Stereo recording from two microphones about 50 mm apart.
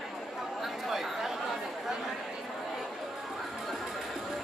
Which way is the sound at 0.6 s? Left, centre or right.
Centre.